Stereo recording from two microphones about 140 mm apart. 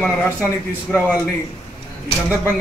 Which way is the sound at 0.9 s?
Centre (ahead or behind).